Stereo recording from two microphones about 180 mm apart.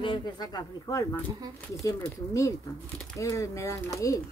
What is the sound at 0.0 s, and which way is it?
Speech, 25° left (ahead or behind).